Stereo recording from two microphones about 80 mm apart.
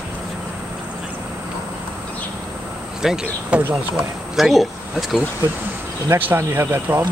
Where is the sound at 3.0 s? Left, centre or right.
Centre.